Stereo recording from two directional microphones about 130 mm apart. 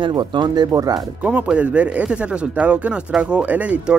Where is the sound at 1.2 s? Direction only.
10° right (ahead or behind).